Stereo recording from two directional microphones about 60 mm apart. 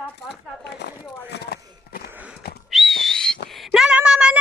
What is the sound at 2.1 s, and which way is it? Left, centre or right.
Horse, right.